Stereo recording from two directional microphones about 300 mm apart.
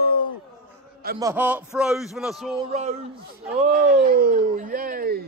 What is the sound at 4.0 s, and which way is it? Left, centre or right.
Speech, right.